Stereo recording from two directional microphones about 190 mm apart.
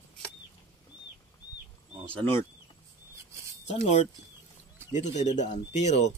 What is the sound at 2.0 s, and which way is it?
Speech, 10° left (ahead or behind).